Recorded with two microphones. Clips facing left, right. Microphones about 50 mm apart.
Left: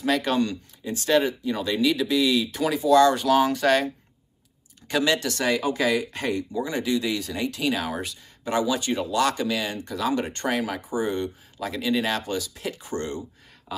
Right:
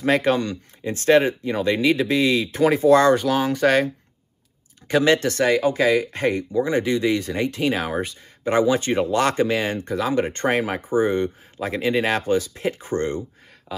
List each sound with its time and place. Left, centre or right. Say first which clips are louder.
0.0 s speech: right 4 dB; right
3.3 s speech: left 1 dB; centre
3.6 s speech: right 3 dB; centre
4.8 s speech: right 5 dB; right